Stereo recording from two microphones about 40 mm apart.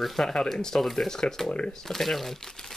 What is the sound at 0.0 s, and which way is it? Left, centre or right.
Speech, centre.